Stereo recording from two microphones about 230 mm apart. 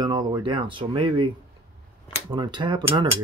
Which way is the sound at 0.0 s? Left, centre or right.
Centre.